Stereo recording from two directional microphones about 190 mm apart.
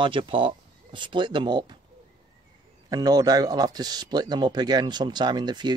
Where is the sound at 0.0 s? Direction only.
25° right (ahead or behind).